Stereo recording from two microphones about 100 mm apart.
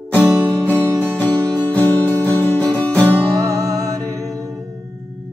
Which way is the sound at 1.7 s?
15° left (ahead or behind).